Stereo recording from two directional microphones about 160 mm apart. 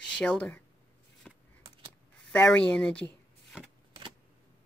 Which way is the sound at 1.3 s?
5° left (ahead or behind).